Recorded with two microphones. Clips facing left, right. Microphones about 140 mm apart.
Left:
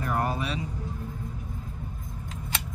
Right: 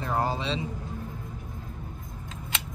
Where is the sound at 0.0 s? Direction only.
25° right (ahead or behind).